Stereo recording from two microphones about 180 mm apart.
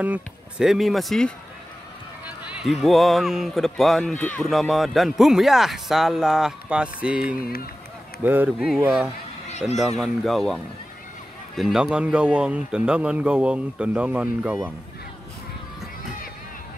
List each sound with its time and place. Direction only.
0.0 s speech: 5° right (ahead or behind)
2.5 s speech: centre (ahead or behind)